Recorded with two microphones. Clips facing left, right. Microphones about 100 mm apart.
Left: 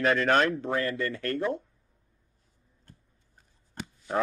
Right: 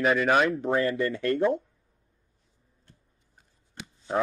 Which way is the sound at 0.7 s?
20° right (ahead or behind).